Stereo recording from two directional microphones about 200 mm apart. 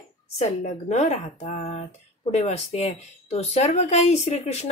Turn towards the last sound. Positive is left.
turn(degrees=30)  # may be behind; listen again after turning